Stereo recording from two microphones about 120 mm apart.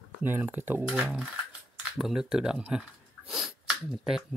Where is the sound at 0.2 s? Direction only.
15° right (ahead or behind).